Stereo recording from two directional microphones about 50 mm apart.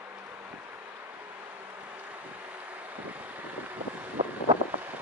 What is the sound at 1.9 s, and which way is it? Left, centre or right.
Boat, right.